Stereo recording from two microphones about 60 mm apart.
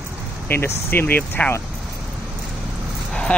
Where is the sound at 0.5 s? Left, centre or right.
Left.